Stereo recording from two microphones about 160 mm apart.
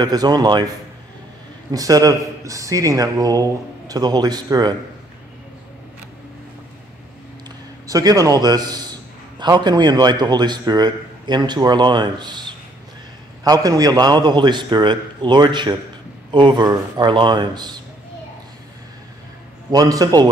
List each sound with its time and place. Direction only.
0.0 s a man's voice: 25° right (ahead or behind)
7.8 s a man's voice: 20° right (ahead or behind)
19.7 s a man's voice: 25° right (ahead or behind)